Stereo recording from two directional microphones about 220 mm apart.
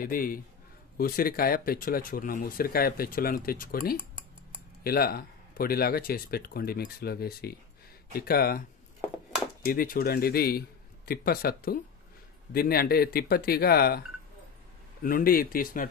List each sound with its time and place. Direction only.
0.0 s speech: 40° left (ahead or behind)
9.7 s speech: 40° left (ahead or behind)
15.0 s speech: 40° left (ahead or behind)